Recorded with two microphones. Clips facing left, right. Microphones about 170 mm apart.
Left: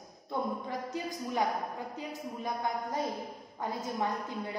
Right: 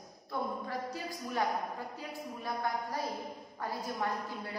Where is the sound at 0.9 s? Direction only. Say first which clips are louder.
Left 3 dB; 20° left (ahead or behind).